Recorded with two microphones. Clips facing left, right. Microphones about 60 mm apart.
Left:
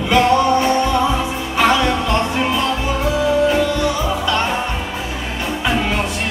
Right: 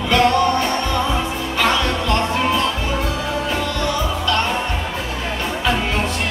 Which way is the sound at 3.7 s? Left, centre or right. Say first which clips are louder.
Left 3 dB; centre.